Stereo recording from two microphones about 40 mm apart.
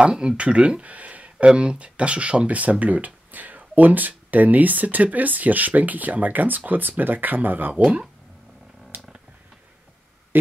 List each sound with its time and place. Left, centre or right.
0.0 s speech: right
0.8 s a sound: right
1.5 s speech: right
7.7 s speech: right
8.9 s purr: right
10.3 s a sound: right